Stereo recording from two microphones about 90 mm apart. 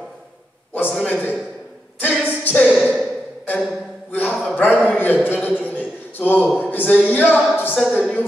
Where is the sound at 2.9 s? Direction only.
5° right (ahead or behind).